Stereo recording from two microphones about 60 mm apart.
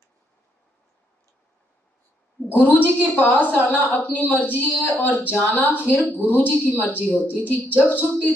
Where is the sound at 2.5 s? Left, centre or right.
Left.